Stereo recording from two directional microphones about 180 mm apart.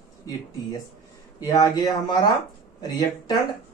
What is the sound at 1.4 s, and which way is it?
Speech, 20° left (ahead or behind).